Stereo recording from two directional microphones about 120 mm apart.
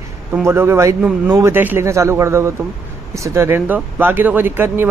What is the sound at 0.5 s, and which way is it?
Speech, 20° right (ahead or behind).